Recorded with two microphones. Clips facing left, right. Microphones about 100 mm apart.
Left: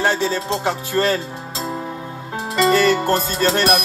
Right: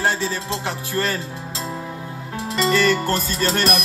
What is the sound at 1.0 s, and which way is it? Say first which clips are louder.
Speech: left 5 dB; 45° left (ahead or behind).